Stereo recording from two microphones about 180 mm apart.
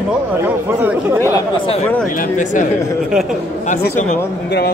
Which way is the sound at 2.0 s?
50° left (ahead or behind).